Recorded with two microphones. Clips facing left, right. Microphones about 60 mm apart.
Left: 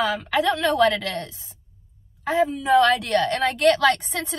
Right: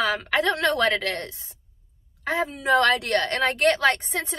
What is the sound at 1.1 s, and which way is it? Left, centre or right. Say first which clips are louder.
A woman's voice: even; right.